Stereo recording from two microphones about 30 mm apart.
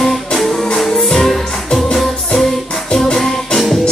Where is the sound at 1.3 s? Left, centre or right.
Centre.